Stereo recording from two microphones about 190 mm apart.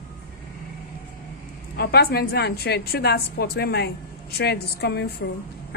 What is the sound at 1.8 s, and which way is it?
A woman's voice, 55° left (ahead or behind).